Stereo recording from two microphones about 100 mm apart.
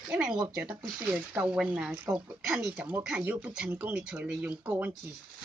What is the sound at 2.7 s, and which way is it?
Speech, 20° right (ahead or behind).